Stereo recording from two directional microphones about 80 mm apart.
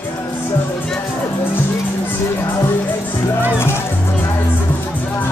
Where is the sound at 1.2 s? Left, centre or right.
Left.